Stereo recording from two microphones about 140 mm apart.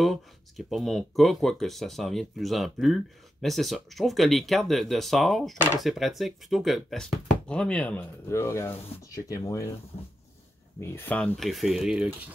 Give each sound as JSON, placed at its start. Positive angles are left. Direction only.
{"t": 0.0, "sound": "speech", "side_deg": 0}
{"t": 8.3, "sound": "speech", "side_deg": 20}
{"t": 10.8, "sound": "speech", "side_deg": 15}